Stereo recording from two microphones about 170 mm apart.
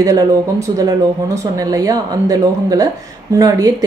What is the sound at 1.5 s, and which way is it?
Speech, 20° right (ahead or behind).